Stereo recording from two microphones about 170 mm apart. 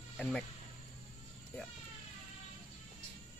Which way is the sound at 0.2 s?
5° left (ahead or behind).